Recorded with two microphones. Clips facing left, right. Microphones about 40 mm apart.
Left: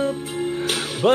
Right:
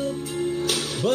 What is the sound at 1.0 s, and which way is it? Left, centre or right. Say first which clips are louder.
Music: left 6 dB; left.